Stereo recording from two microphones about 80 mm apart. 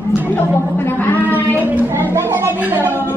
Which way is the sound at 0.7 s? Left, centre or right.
Left.